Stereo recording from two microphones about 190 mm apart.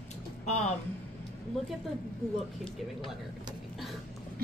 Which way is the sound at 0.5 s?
35° left (ahead or behind).